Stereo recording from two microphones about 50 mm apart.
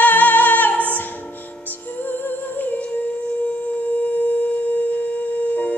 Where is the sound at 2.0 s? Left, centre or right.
Left.